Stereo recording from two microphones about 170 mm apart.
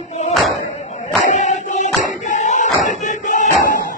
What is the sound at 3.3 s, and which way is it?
Music, 45° left (ahead or behind).